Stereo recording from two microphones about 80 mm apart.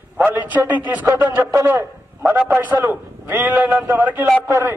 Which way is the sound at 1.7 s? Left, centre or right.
Right.